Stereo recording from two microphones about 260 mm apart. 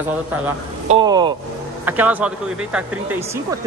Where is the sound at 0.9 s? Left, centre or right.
Centre.